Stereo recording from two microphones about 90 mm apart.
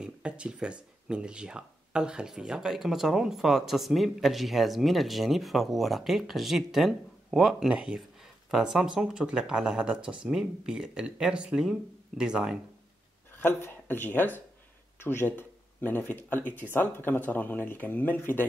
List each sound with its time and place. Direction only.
0.0 s speech: 10° right (ahead or behind)
13.3 s speech: 25° left (ahead or behind)